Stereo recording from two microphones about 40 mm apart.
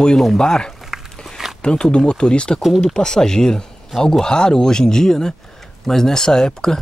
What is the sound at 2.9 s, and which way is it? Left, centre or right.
Speech, centre.